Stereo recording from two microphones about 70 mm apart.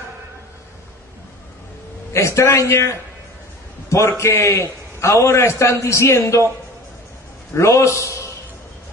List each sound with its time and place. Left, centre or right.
2.1 s a man's voice: left
4.2 s a man's voice: left
7.5 s a man's voice: left